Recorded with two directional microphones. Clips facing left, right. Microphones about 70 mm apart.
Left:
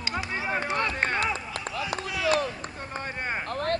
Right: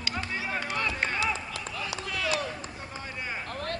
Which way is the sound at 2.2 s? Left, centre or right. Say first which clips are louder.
Left 7 dB; left.